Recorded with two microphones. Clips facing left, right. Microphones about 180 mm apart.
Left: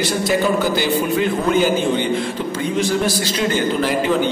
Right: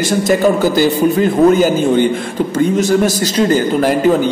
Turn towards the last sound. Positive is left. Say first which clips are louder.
# right 6 dB
turn(degrees=-45)  # may be behind; listen again after turning